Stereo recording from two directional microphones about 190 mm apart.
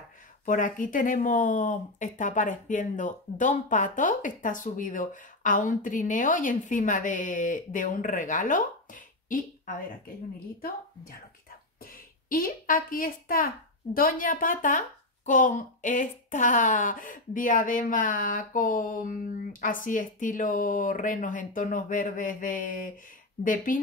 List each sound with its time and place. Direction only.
0.5 s speech: 45° left (ahead or behind)
11.8 s a woman's voice: 50° left (ahead or behind)